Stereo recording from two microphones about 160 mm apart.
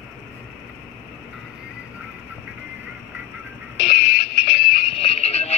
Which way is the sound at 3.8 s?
40° left (ahead or behind).